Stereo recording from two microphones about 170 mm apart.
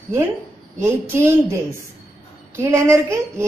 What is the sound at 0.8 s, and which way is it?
A woman's voice, 15° right (ahead or behind).